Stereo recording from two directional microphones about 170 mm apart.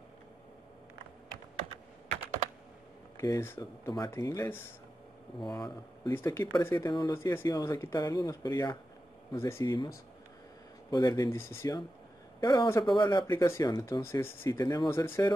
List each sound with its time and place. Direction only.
3.2 s speech: 15° left (ahead or behind)
10.9 s speech: 25° left (ahead or behind)